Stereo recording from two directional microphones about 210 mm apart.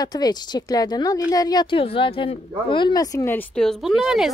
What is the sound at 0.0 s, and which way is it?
Speech, 20° left (ahead or behind).